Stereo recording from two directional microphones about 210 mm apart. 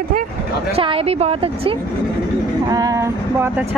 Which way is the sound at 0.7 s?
25° right (ahead or behind).